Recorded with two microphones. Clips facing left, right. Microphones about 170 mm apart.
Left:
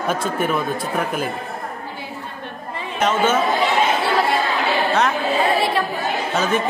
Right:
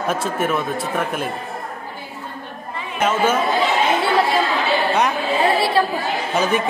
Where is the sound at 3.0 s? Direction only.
10° right (ahead or behind).